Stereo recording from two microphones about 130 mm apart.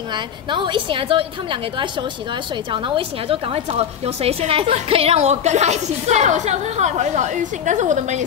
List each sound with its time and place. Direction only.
0.1 s a woman's voice: 40° right (ahead or behind); by 8.2 s 70° right (ahead or behind)